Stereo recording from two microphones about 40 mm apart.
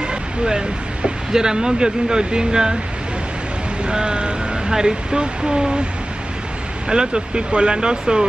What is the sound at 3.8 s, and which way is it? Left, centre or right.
Speech, right.